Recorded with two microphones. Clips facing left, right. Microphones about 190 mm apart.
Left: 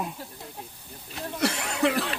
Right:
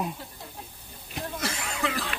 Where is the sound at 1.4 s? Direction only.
65° left (ahead or behind).